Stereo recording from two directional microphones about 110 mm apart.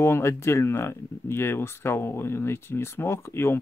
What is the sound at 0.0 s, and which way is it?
Speech, 25° left (ahead or behind).